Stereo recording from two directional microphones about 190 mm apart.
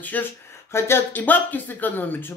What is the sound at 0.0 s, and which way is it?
Speech, 10° left (ahead or behind).